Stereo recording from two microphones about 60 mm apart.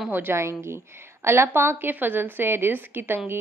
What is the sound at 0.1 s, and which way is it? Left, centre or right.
Speech, right.